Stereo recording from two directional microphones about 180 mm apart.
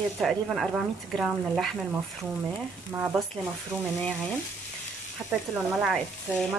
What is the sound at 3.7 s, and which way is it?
Speech, 5° left (ahead or behind).